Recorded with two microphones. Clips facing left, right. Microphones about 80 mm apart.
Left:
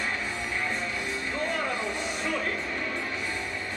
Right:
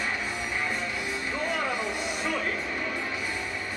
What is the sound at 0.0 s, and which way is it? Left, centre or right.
Music, centre.